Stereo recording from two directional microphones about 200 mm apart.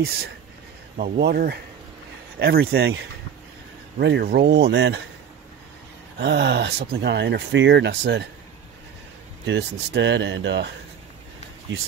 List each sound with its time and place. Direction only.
0.9 s speech: 45° right (ahead or behind)
4.0 s speech: 55° right (ahead or behind)
6.1 s speech: 60° right (ahead or behind)
9.5 s speech: 60° right (ahead or behind)